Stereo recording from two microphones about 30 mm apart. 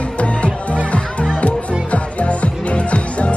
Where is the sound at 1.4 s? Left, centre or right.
Left.